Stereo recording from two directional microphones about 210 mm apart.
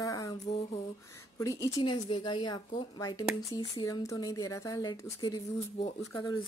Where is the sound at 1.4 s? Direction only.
15° left (ahead or behind).